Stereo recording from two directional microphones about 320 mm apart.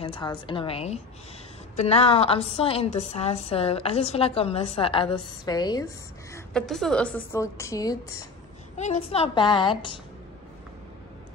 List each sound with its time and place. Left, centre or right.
0.0 s a woman's voice: centre
6.3 s a woman's voice: centre